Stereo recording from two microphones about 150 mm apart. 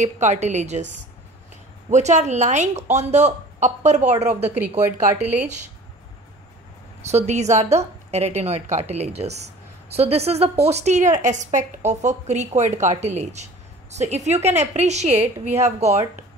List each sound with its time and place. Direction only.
0.0 s speech: 50° right (ahead or behind)
1.9 s speech: 50° right (ahead or behind)
4.5 s speech: 15° right (ahead or behind)
7.1 s speech: 50° right (ahead or behind)